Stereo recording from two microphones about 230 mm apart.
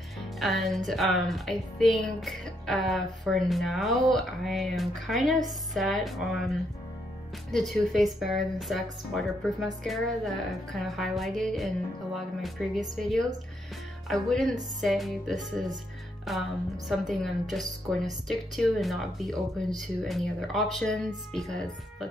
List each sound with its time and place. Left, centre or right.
0.4 s a woman's voice: centre
7.5 s a woman's voice: centre